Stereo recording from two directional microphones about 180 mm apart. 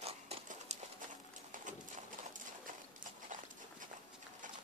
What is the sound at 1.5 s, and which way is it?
Horse, 45° right (ahead or behind).